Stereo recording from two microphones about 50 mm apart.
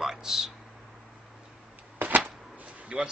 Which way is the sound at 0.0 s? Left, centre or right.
Centre.